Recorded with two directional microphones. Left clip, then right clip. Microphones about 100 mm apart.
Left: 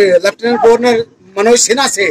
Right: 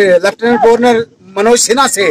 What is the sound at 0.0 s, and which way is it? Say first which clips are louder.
Speech: right 1 dB; 10° right (ahead or behind).